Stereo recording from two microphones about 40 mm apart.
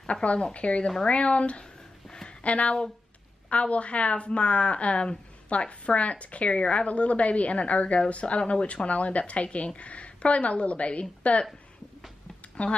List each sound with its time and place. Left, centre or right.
0.0 s a woman's voice: left
12.6 s a woman's voice: left